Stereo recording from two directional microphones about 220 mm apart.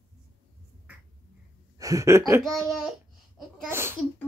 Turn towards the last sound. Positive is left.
turn(degrees=-10)  # may be behind; listen again after turning